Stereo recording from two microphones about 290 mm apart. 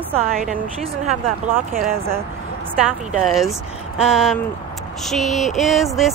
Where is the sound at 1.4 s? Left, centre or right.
Right.